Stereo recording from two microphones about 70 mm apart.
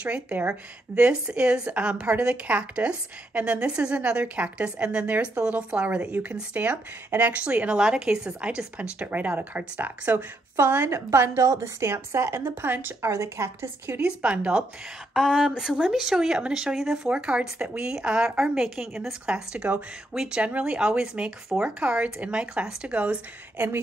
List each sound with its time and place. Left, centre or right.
0.0 s a woman's voice: right
10.9 s a woman's voice: right
13.1 s a woman's voice: right
14.0 s a woman's voice: centre
15.1 s a woman's voice: centre
23.6 s a woman's voice: right